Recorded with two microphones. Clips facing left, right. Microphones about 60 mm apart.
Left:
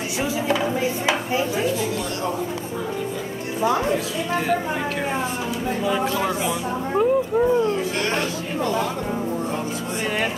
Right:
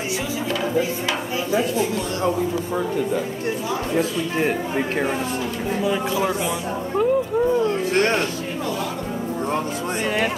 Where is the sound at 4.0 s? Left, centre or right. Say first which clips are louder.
Right 3 dB; right.